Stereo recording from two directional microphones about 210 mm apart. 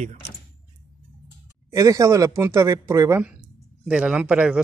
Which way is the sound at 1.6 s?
15° right (ahead or behind).